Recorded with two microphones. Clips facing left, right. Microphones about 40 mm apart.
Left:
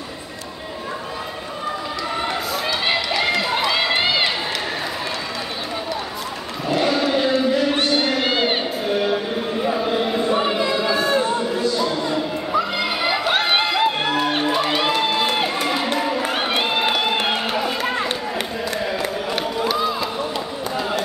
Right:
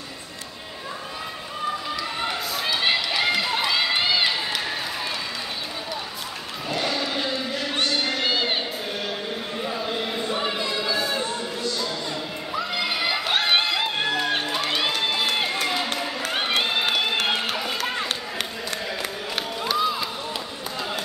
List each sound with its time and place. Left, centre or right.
2.5 s run: centre
3.7 s run: left
6.7 s a sound: centre